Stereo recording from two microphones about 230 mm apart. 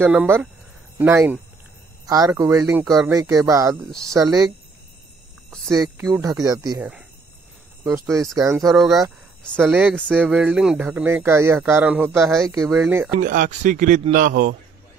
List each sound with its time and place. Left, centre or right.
0.0 s speech: centre
5.7 s speech: centre
6.8 s speech: centre
13.2 s speech: right